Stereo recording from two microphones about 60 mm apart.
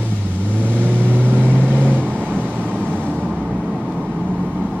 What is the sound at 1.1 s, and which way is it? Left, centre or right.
Vehicle, right.